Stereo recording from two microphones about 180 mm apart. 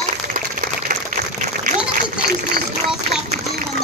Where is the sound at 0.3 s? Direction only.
50° right (ahead or behind).